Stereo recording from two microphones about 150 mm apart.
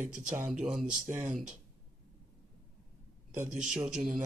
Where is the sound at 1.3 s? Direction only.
5° right (ahead or behind).